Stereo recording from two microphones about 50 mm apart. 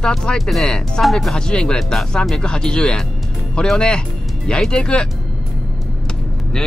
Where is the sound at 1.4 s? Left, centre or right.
Centre.